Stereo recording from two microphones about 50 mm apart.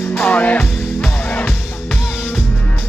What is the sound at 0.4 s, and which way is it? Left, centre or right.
Music, left.